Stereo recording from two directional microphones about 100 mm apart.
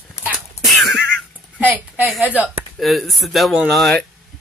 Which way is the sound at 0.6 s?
Centre (ahead or behind).